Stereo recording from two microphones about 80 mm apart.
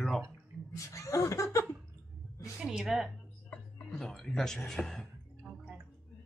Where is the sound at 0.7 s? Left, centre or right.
Left.